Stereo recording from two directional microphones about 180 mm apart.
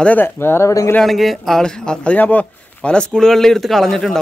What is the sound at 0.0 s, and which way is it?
Speech, 10° left (ahead or behind).